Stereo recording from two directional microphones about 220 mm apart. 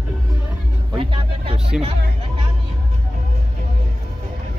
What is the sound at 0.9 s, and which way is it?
Music, 25° right (ahead or behind).